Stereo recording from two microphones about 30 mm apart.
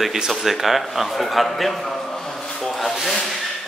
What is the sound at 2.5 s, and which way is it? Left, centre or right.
Rub, centre.